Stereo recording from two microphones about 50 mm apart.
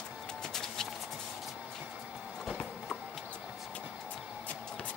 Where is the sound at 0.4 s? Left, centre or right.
Centre.